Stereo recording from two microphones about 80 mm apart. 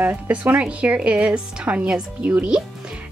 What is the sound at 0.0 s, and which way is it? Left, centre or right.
Speech, centre.